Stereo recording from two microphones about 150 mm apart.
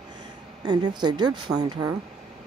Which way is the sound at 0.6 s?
30° right (ahead or behind).